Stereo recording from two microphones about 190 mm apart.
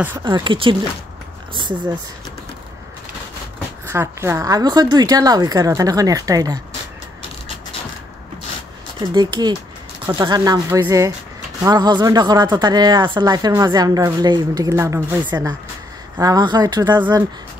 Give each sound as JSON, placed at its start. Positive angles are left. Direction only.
{"t": 0.2, "sound": "a woman's voice", "side_deg": -25}
{"t": 3.8, "sound": "a woman's voice", "side_deg": -15}
{"t": 9.0, "sound": "a woman's voice", "side_deg": -25}